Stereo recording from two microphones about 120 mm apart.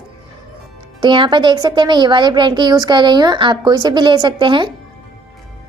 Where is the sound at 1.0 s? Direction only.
40° right (ahead or behind).